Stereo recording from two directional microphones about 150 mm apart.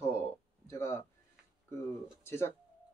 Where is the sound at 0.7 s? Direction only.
15° left (ahead or behind).